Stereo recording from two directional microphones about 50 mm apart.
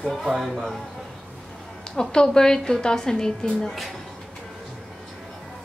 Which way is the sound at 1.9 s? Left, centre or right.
Centre.